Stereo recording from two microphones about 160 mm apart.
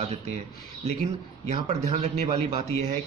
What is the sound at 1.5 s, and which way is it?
Speech, 45° right (ahead or behind).